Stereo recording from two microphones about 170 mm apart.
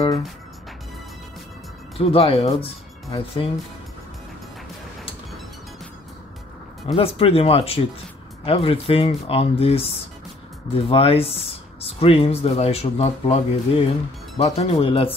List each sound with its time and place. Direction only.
2.0 s speech: 35° left (ahead or behind)
7.0 s speech: 35° left (ahead or behind)